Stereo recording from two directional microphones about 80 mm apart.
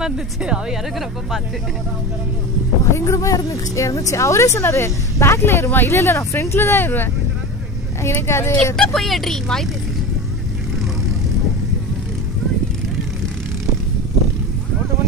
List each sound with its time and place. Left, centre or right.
0.0 s speech: centre
2.8 s speech: left
8.7 s speech: centre